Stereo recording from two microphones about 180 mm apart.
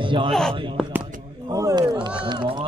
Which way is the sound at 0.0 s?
30° right (ahead or behind).